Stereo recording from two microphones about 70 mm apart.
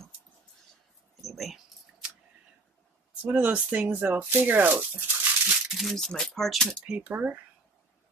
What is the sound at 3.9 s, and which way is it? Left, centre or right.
Speech, right.